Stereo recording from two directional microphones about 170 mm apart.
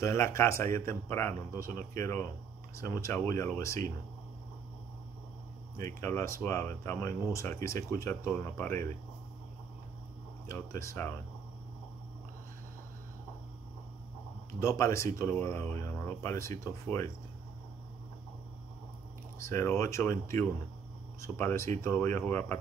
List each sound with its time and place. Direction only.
0.0 s speech: 15° left (ahead or behind)
5.9 s speech: 15° left (ahead or behind)
10.5 s speech: 15° left (ahead or behind)
14.6 s speech: 15° left (ahead or behind)
19.4 s speech: 15° left (ahead or behind)